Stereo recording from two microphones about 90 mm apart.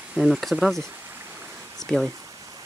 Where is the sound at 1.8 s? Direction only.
5° left (ahead or behind).